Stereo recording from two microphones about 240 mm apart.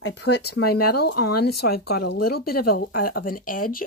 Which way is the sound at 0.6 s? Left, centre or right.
Left.